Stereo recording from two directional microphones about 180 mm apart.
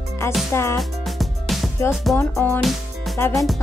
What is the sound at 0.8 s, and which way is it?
Music, centre (ahead or behind).